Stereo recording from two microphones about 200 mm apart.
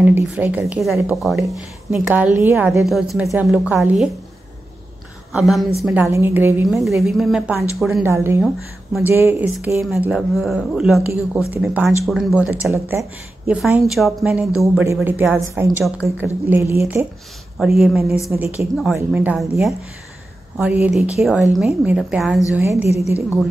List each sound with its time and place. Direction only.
0.0 s speech: 10° right (ahead or behind)
5.3 s speech: centre (ahead or behind)
8.0 s speech: 10° right (ahead or behind)
17.6 s speech: centre (ahead or behind)
22.6 s speech: 15° right (ahead or behind)